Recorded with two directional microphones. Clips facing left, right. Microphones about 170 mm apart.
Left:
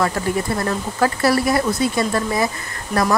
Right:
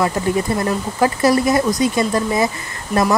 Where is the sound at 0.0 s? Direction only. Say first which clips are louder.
Right 2 dB; 15° right (ahead or behind).